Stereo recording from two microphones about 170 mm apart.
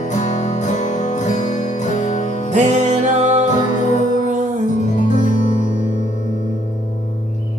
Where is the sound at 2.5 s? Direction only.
45° right (ahead or behind).